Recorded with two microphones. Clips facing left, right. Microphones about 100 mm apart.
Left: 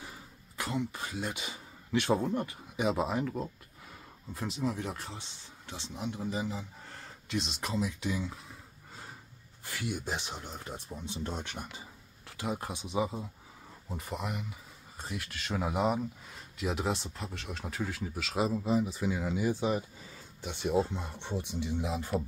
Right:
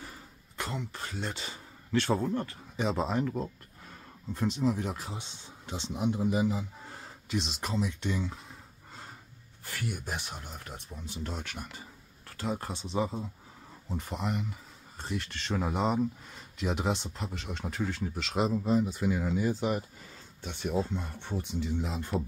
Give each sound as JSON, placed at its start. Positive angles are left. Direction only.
{"t": 0.6, "sound": "speech", "side_deg": 5}
{"t": 5.1, "sound": "speech", "side_deg": -20}
{"t": 9.7, "sound": "speech", "side_deg": 15}
{"t": 10.0, "sound": "speech", "side_deg": -5}
{"t": 10.9, "sound": "speech", "side_deg": 20}
{"t": 12.3, "sound": "speech", "side_deg": 10}